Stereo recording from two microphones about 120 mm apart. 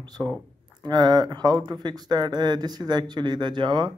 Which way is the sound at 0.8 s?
35° right (ahead or behind).